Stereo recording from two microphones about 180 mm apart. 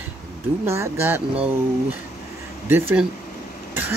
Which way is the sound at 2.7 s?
10° right (ahead or behind).